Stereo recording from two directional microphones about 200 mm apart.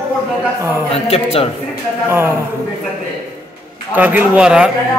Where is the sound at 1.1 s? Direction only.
30° left (ahead or behind).